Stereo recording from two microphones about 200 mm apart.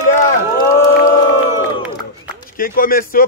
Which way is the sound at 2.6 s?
45° left (ahead or behind).